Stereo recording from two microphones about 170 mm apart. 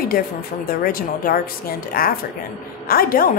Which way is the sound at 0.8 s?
60° left (ahead or behind).